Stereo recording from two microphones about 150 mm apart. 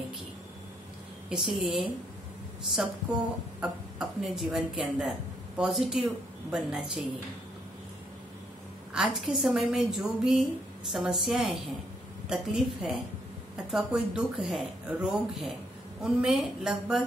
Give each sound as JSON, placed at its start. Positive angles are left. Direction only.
{"t": 1.3, "sound": "speech", "side_deg": 0}
{"t": 8.9, "sound": "speech", "side_deg": 0}